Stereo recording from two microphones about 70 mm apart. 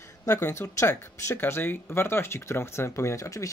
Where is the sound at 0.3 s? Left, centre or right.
Left.